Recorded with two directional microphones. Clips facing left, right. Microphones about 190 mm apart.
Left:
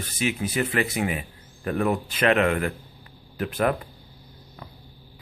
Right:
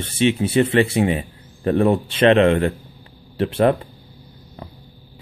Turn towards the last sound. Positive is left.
turn(degrees=-30)  # may be behind; listen again after turning